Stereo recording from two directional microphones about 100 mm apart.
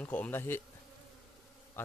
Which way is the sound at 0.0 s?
15° left (ahead or behind).